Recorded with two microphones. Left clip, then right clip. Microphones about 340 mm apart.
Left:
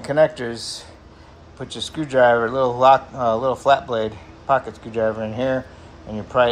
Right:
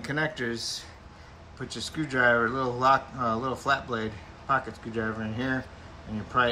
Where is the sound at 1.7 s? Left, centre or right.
Centre.